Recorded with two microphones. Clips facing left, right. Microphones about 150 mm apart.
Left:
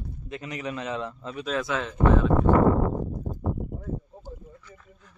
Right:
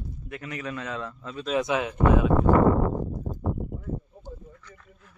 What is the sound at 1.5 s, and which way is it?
Speech, 15° right (ahead or behind).